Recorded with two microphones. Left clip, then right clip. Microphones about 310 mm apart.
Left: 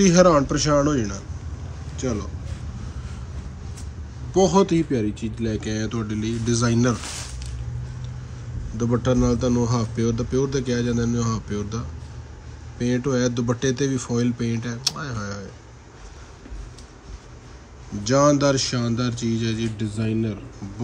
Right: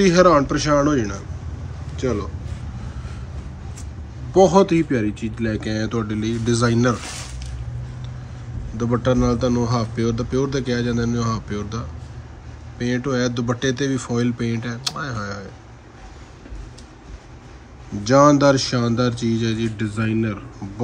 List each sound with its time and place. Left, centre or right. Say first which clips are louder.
0.0 s a man's voice: right 2 dB; centre
4.3 s speech: right 4 dB; centre
8.7 s a man's voice: right 2 dB; centre
18.0 s speech: right 5 dB; centre